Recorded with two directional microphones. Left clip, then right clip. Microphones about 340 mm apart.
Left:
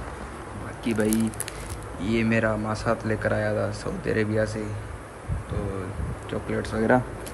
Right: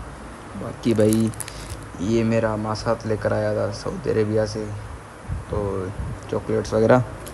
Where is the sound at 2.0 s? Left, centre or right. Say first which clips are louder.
Right 3 dB; centre.